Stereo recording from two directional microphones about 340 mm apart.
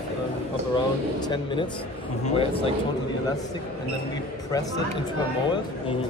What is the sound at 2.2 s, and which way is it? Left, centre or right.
Speech, centre.